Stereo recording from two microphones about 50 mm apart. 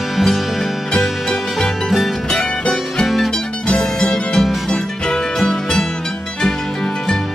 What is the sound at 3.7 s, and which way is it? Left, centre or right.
Music, centre.